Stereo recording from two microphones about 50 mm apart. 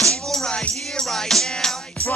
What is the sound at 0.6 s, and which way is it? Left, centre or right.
Music, left.